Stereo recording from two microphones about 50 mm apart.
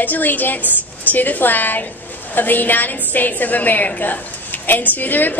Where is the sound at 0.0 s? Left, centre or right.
Left.